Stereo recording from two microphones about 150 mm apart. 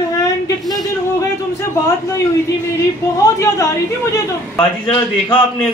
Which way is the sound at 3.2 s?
20° left (ahead or behind).